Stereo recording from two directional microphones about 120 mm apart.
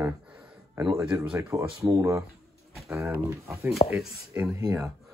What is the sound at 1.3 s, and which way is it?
Speech, 25° right (ahead or behind).